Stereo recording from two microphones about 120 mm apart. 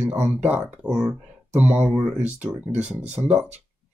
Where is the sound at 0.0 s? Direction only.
15° right (ahead or behind).